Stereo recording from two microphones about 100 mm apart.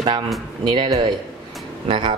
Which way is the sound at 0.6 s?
50° right (ahead or behind).